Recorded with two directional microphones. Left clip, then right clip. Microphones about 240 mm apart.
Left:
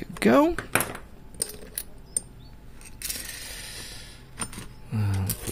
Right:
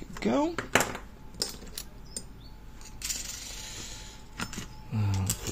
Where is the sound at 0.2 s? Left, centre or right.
Left.